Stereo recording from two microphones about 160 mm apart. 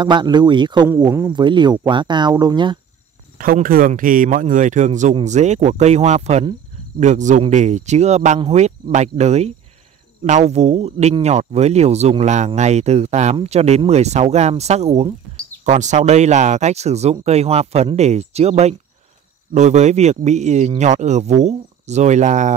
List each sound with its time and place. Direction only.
0.0 s speech: 30° right (ahead or behind)
3.3 s a man's voice: 60° right (ahead or behind)